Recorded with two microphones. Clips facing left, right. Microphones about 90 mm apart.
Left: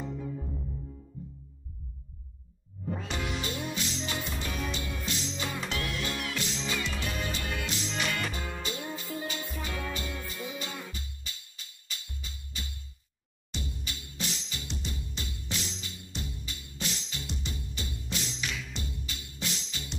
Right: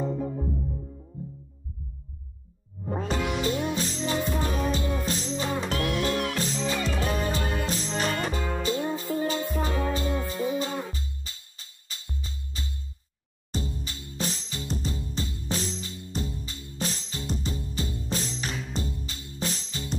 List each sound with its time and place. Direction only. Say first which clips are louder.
0.0 s music: right 8 dB; 40° right (ahead or behind)
2.8 s music: right 6 dB; 40° right (ahead or behind)
5.7 s music: right 8 dB; 45° right (ahead or behind)